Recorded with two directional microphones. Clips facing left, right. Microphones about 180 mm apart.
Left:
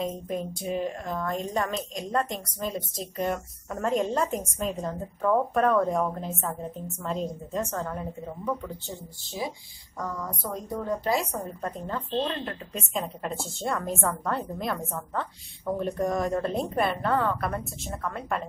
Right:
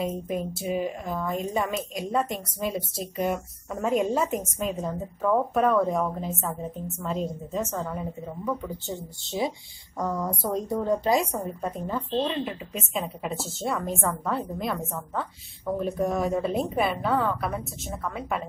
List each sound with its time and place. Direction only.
0.0 s a woman's voice: 5° right (ahead or behind)
9.2 s a woman's voice: 25° right (ahead or behind)
11.3 s a woman's voice: 10° right (ahead or behind)